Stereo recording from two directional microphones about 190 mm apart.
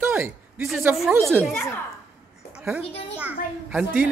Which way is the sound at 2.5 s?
5° right (ahead or behind).